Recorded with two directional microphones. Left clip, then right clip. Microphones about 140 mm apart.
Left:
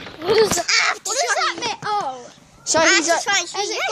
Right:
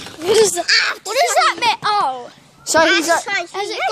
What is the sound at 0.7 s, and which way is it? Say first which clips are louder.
Speech: right 3 dB; 30° left (ahead or behind).